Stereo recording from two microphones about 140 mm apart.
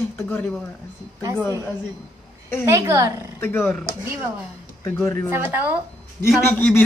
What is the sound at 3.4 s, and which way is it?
Speech, 15° left (ahead or behind).